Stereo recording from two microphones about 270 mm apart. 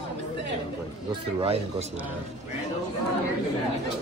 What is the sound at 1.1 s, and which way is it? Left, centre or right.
Speech, centre.